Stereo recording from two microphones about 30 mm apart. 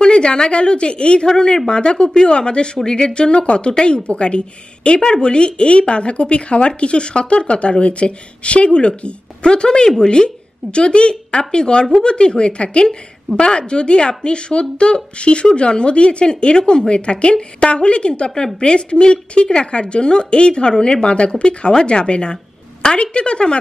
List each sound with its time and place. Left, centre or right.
0.0 s a woman's voice: left
1.2 s a woman's voice: left